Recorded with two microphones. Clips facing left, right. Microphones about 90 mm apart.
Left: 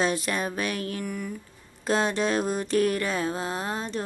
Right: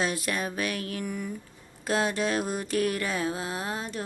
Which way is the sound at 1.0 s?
15° right (ahead or behind).